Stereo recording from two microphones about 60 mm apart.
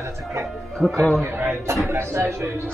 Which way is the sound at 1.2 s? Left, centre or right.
Right.